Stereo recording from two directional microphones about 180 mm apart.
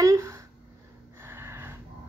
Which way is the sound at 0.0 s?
15° right (ahead or behind).